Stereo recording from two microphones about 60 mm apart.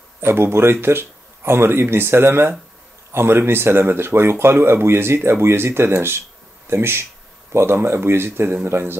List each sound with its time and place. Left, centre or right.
0.2 s speech: right